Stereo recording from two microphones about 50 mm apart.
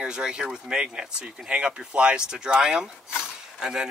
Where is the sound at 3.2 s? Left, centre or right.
Centre.